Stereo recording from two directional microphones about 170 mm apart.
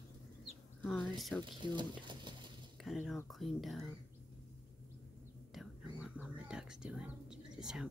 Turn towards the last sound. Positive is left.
turn(degrees=-5)  # may be behind; listen again after turning